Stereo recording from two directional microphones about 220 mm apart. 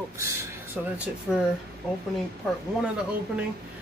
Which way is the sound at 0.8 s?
5° right (ahead or behind).